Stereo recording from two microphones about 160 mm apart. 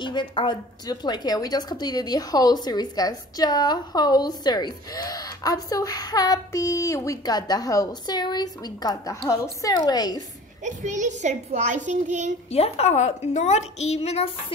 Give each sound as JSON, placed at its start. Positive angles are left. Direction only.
{"t": 0.0, "sound": "a woman's voice", "side_deg": 30}
{"t": 10.6, "sound": "a child's voice", "side_deg": -50}
{"t": 12.4, "sound": "a woman's voice", "side_deg": 40}